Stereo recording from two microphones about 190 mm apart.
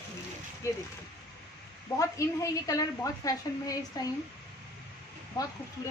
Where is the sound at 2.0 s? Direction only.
15° left (ahead or behind).